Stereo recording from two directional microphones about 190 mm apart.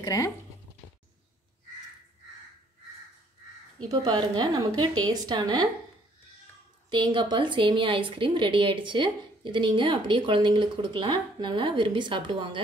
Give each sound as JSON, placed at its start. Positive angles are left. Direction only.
{"t": 0.0, "sound": "speech", "side_deg": 20}
{"t": 3.9, "sound": "a woman's voice", "side_deg": -20}
{"t": 6.9, "sound": "a woman's voice", "side_deg": -25}